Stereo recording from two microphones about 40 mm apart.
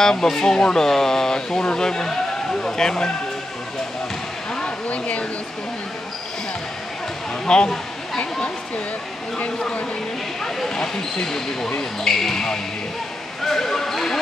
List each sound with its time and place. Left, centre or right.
0.0 s speech: centre
4.8 s speech: left
7.4 s speech: left
10.4 s speech: centre